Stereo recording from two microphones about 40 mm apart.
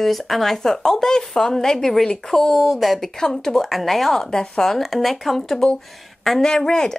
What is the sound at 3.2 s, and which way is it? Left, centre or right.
Speech, centre.